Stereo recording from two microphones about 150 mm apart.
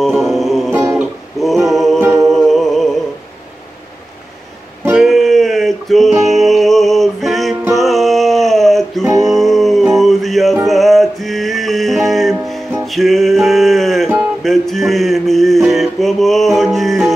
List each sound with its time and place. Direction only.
0.0 s music: centre (ahead or behind)
0.7 s music: 20° right (ahead or behind)
1.4 s music: centre (ahead or behind)
2.0 s music: 20° right (ahead or behind)
2.2 s music: centre (ahead or behind)
4.9 s music: centre (ahead or behind)